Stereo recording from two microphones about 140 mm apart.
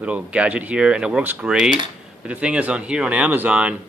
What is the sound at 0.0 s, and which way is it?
Speech, 10° right (ahead or behind).